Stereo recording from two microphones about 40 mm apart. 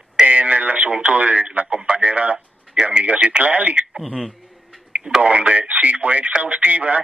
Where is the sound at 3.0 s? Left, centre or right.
Right.